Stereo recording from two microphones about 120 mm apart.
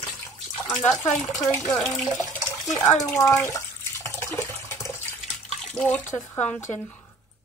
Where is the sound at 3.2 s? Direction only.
20° left (ahead or behind).